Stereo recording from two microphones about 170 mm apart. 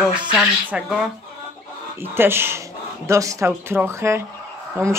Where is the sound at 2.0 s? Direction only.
15° right (ahead or behind).